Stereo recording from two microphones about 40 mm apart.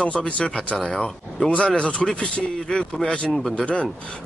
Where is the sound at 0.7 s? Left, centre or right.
Centre.